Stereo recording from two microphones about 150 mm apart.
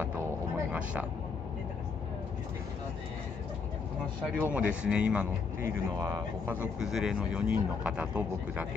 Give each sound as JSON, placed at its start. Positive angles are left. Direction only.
{"t": 0.0, "sound": "a sound", "side_deg": -10}
{"t": 4.4, "sound": "speech", "side_deg": -10}
{"t": 5.9, "sound": "speech", "side_deg": -25}
{"t": 6.5, "sound": "speech", "side_deg": -5}